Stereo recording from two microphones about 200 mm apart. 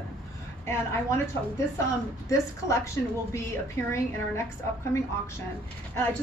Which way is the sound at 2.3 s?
15° left (ahead or behind).